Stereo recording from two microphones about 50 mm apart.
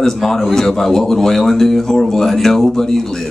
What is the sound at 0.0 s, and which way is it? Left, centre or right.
A man's voice, centre.